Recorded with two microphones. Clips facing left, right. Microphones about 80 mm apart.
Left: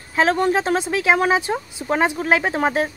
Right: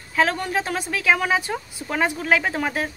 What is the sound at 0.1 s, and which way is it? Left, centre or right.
Speech, left.